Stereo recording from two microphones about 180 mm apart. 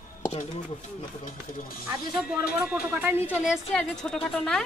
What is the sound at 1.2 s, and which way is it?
Speech, 55° left (ahead or behind).